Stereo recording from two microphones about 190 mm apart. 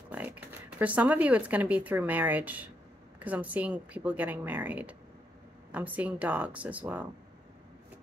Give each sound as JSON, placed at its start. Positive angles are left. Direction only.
{"t": 0.1, "sound": "speech", "side_deg": -10}